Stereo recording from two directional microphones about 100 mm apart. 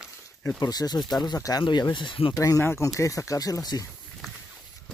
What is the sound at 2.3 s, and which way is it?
Speech, 35° left (ahead or behind).